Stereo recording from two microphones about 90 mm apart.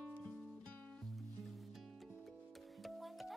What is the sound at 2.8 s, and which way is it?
Music, centre (ahead or behind).